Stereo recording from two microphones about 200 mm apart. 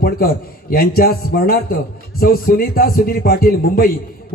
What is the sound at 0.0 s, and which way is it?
A man's voice, 50° left (ahead or behind).